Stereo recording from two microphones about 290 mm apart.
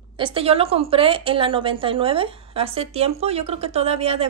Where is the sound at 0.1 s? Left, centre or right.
Centre.